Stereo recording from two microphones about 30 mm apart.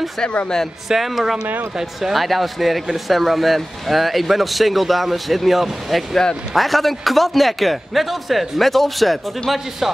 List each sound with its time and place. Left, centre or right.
0.8 s speech: centre
2.1 s a man's voice: centre